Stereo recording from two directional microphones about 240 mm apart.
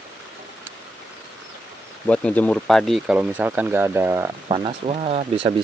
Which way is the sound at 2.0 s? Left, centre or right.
Centre.